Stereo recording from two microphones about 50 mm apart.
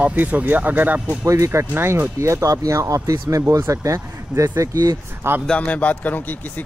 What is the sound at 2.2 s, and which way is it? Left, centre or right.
Speech, right.